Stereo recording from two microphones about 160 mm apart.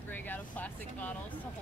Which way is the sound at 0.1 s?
10° left (ahead or behind).